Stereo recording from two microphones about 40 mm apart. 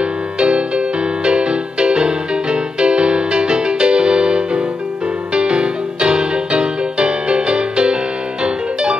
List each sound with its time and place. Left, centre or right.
0.0 s music: right